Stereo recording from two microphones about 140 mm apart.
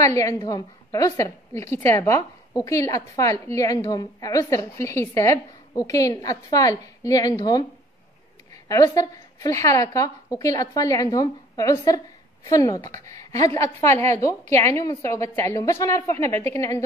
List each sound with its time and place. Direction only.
0.0 s a woman's voice: 25° left (ahead or behind)
8.6 s a woman's voice: 25° left (ahead or behind)